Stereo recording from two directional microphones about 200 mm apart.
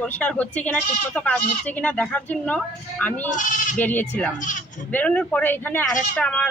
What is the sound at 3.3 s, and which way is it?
Speech, 40° left (ahead or behind).